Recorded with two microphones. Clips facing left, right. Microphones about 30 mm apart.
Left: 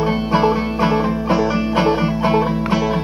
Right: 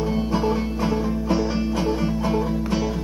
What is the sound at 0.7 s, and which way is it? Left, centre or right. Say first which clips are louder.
Music: left 6 dB; left.